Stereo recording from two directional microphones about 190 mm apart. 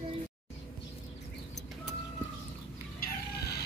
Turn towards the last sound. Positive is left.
turn(degrees=60)  # may be behind; listen again after turning